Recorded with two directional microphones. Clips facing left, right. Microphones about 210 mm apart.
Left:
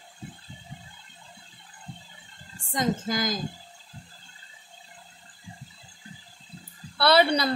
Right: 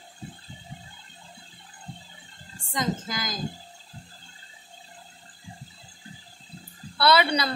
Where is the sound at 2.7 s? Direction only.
45° left (ahead or behind).